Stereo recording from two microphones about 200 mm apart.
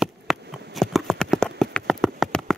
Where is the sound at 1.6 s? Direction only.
Centre (ahead or behind).